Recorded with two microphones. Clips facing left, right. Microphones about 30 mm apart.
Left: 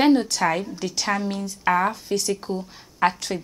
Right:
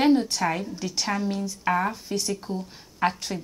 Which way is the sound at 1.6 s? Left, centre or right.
Left.